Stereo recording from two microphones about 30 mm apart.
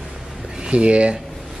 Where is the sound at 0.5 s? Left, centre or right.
Right.